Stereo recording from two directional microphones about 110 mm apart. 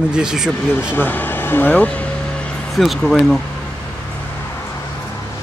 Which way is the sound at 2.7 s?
Centre (ahead or behind).